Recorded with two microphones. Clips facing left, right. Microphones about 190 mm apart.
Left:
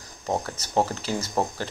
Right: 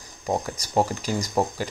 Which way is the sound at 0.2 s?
10° right (ahead or behind).